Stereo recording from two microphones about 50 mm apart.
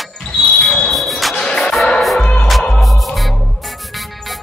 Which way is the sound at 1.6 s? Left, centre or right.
Centre.